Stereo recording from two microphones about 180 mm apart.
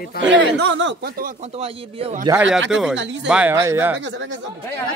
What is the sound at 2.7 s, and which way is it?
Speech, centre (ahead or behind).